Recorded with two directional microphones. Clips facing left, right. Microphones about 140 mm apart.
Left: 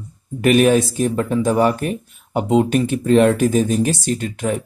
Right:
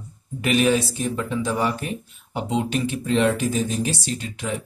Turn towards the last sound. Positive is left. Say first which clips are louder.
# left 7 dB
turn(degrees=50)  # may be behind; listen again after turning